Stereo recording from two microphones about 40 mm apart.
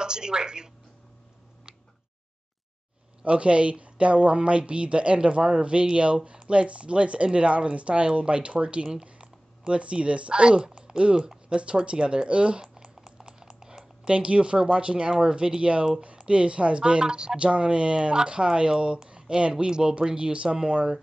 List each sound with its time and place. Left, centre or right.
0.0 s a woman's voice: centre
3.3 s a woman's voice: right
12.6 s typing: centre
14.1 s a woman's voice: right